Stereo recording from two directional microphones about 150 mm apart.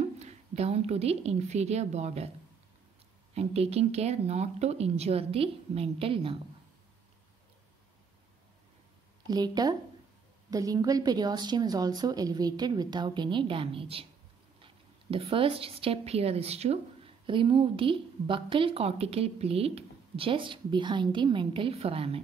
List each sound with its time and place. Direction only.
0.0 s a woman's voice: 45° right (ahead or behind)
3.3 s speech: 45° right (ahead or behind)
9.3 s a woman's voice: 25° right (ahead or behind)